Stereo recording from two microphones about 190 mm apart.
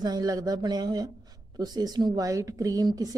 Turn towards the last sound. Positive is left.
turn(degrees=-20)  # may be behind; listen again after turning